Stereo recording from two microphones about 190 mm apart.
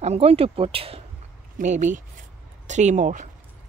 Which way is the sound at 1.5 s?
40° right (ahead or behind).